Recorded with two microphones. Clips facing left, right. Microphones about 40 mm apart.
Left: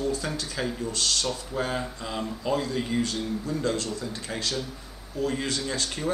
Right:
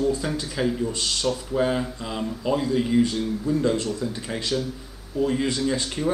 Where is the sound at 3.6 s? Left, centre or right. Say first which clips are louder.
Right 5 dB; right.